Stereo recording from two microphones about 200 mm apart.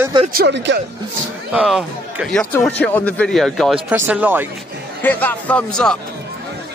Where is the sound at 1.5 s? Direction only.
5° right (ahead or behind).